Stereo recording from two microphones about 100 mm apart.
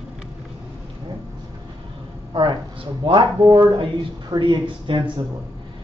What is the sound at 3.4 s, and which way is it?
Speech, 35° right (ahead or behind).